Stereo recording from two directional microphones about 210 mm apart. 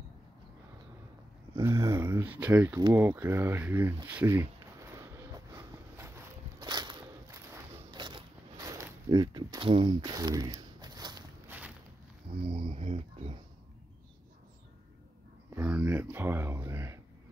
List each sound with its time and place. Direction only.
1.5 s a sound: 10° right (ahead or behind)
12.4 s speech: 25° right (ahead or behind)
15.5 s speech: 5° right (ahead or behind)